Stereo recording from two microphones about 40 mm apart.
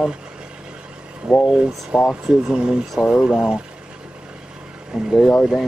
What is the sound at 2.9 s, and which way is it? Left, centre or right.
Speech, centre.